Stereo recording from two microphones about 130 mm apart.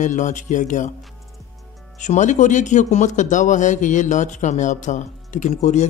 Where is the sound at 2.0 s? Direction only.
70° left (ahead or behind).